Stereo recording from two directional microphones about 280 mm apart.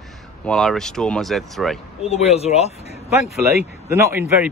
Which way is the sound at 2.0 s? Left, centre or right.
Left.